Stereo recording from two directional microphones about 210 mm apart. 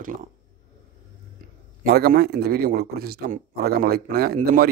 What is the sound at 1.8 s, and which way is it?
A man's voice, 45° right (ahead or behind).